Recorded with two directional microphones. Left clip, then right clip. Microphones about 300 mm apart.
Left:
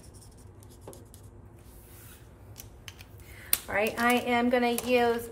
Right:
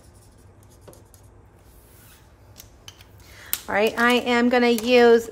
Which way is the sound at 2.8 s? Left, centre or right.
Centre.